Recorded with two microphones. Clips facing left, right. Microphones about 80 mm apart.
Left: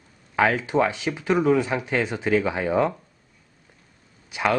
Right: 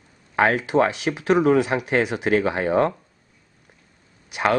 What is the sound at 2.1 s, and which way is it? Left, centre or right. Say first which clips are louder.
Speech: right 2 dB; right.